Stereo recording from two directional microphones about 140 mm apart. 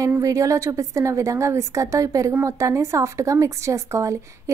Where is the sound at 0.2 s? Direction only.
25° right (ahead or behind).